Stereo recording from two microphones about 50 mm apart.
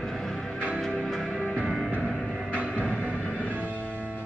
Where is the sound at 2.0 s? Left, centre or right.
Left.